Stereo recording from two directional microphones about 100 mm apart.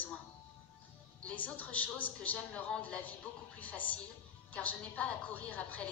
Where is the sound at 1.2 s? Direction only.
10° left (ahead or behind).